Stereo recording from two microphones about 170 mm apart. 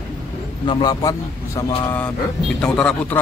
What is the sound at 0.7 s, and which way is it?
A man's voice, 25° left (ahead or behind).